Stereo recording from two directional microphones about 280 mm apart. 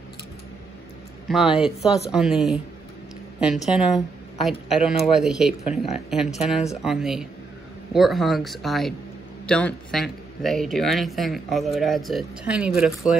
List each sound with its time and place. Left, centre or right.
1.3 s speech: centre